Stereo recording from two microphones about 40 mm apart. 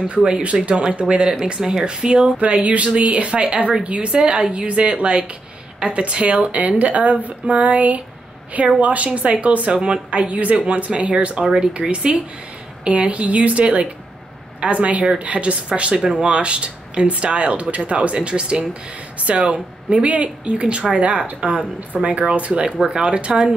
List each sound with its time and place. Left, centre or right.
0.6 s speech: right
2.3 s speech: right
11.4 s speech: centre
11.9 s speech: right
22.5 s speech: right